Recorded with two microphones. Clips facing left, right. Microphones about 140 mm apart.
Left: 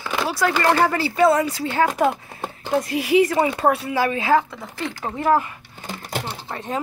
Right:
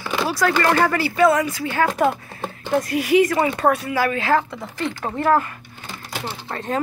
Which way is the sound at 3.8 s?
20° left (ahead or behind).